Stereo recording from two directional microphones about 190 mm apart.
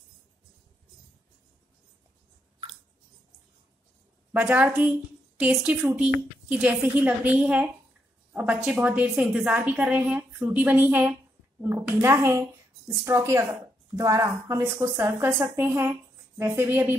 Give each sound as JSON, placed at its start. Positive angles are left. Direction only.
{"t": 4.3, "sound": "a woman's voice", "side_deg": -5}